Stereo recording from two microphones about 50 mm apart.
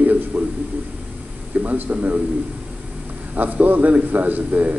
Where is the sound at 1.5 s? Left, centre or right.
Right.